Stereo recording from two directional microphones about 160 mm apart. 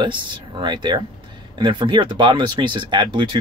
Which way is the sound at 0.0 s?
30° right (ahead or behind).